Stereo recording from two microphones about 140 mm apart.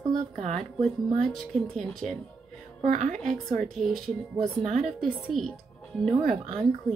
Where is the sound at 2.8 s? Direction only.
60° right (ahead or behind).